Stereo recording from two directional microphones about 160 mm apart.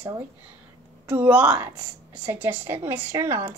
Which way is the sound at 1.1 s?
10° right (ahead or behind).